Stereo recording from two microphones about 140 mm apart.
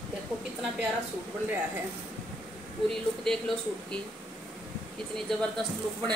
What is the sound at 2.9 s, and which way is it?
A woman's voice, 5° left (ahead or behind).